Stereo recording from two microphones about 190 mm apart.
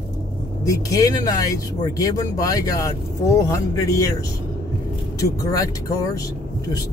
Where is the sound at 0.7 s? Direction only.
20° left (ahead or behind).